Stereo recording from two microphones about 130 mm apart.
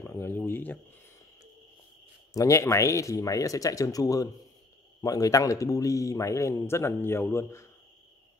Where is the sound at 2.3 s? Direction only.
25° left (ahead or behind).